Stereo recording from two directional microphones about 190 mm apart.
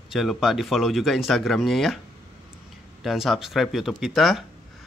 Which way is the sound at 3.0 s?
Centre (ahead or behind).